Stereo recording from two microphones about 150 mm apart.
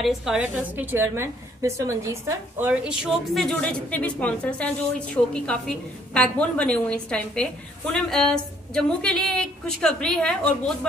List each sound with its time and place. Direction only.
0.0 s a woman's voice: 5° right (ahead or behind); by 2.7 s 20° right (ahead or behind)
2.7 s a woman's voice: 5° right (ahead or behind)
3.4 s a woman's voice: 5° left (ahead or behind)